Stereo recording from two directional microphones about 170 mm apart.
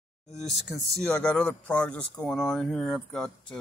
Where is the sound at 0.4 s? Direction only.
Centre (ahead or behind).